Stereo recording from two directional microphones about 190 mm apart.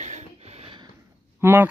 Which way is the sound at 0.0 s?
40° right (ahead or behind).